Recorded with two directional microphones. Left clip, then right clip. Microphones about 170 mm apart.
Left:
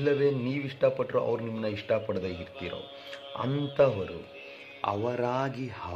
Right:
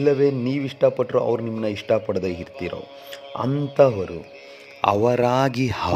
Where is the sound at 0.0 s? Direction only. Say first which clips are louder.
Right 7 dB; 50° right (ahead or behind).